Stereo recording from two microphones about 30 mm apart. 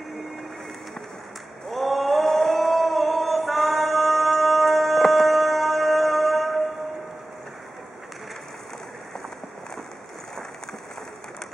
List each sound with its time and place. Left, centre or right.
1.7 s male singing: centre